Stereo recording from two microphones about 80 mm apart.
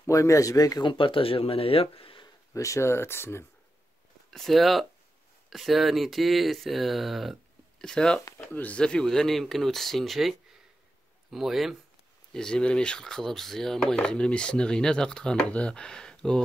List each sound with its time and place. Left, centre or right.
0.0 s speech: left
0.8 s speech: left
2.5 s speech: left
4.3 s speech: centre
8.4 s speech: left
8.7 s speech: centre
12.4 s speech: centre